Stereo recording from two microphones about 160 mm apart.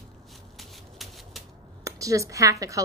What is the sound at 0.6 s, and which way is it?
Shuffling cards, centre (ahead or behind).